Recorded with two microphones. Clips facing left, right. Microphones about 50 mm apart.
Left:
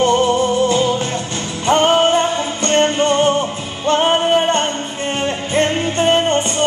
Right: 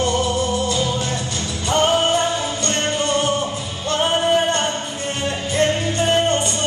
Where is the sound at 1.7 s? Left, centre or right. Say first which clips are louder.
Left 4 dB; left.